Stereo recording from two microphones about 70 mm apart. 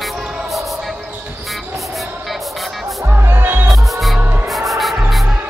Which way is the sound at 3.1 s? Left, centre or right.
Right.